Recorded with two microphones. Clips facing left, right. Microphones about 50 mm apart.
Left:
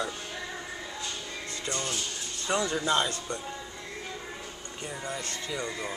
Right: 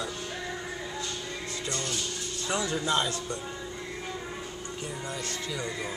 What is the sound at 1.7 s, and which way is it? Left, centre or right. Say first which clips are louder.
Speech: left 1 dB; centre.